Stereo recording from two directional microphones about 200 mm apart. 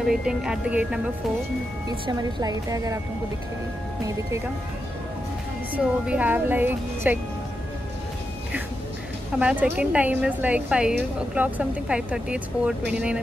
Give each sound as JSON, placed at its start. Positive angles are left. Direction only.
{"t": 0.0, "sound": "speech", "side_deg": -5}
{"t": 1.9, "sound": "speech", "side_deg": -20}
{"t": 5.8, "sound": "a woman's voice", "side_deg": -5}
{"t": 9.4, "sound": "a woman's voice", "side_deg": -5}